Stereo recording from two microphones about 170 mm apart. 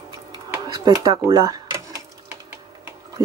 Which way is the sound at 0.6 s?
20° right (ahead or behind).